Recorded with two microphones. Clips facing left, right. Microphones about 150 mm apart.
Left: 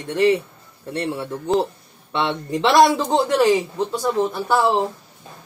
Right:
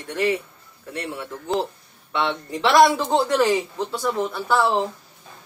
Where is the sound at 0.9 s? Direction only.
35° left (ahead or behind).